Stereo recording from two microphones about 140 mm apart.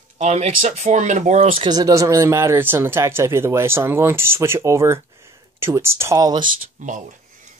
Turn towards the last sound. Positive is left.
turn(degrees=-65)  # may be behind; listen again after turning